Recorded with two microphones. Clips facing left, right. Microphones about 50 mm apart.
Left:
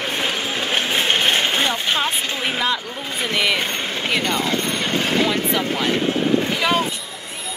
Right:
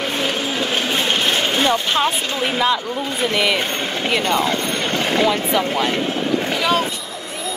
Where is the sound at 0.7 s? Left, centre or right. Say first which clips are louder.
Left 2 dB; left.